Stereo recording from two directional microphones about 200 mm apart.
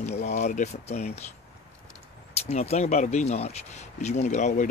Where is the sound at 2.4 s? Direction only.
30° left (ahead or behind).